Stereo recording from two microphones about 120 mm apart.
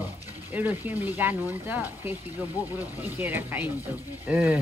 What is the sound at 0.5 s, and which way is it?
Speech, 15° right (ahead or behind).